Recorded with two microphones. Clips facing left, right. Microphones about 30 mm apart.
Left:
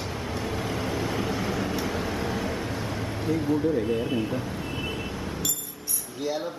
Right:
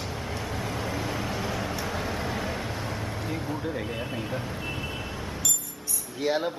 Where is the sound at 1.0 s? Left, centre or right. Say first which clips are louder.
Left 2 dB; centre.